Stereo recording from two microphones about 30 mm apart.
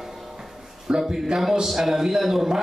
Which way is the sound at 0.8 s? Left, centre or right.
Right.